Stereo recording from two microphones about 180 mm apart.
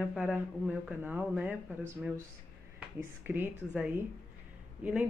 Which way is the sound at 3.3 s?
10° right (ahead or behind).